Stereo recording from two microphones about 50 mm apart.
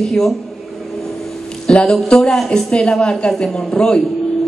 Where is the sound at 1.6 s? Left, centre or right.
Centre.